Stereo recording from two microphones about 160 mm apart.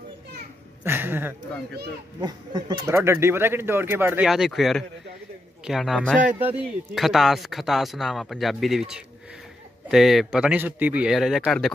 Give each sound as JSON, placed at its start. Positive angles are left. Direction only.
{"t": 0.8, "sound": "speech", "side_deg": -15}
{"t": 2.2, "sound": "speech", "side_deg": -25}
{"t": 2.9, "sound": "speech", "side_deg": -15}